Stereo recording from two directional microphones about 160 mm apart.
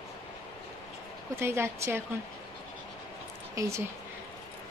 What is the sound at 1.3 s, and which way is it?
Speech, 15° right (ahead or behind).